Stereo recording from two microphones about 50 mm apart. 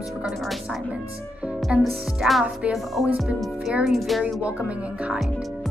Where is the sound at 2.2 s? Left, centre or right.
Centre.